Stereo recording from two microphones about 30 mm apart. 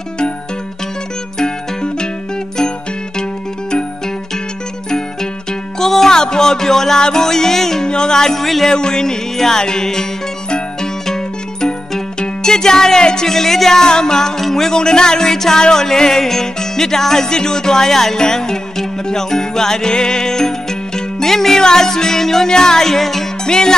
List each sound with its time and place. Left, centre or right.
1.4 s music: left
4.9 s music: centre
6.1 s music: left
7.8 s music: left; by 8.6 s centre
8.6 s music: left
11.1 s music: centre
14.7 s music: left
23.4 s music: left